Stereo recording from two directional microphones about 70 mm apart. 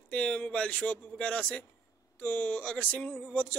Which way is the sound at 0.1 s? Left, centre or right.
Centre.